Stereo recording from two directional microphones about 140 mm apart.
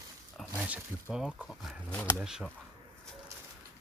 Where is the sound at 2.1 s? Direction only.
Centre (ahead or behind).